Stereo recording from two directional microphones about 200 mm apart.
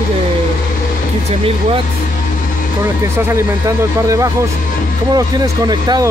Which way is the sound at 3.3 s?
15° right (ahead or behind).